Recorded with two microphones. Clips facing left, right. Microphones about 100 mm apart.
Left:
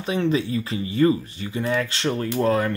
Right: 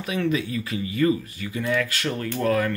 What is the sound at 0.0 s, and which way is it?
Speech, 30° left (ahead or behind).